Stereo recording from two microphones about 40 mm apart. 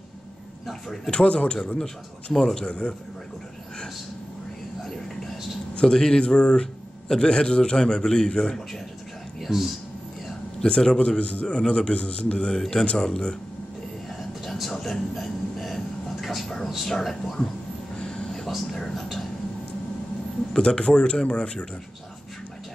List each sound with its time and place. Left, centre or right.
0.7 s speech: centre
1.1 s a man's voice: left
2.3 s a man's voice: centre
4.8 s a sound: centre
5.8 s a man's voice: centre
9.4 s a man's voice: centre
10.6 s a man's voice: centre
12.5 s speech: centre
14.0 s a sound: centre
16.6 s speech: centre
18.0 s a sound: centre
18.7 s speech: centre
20.5 s a man's voice: left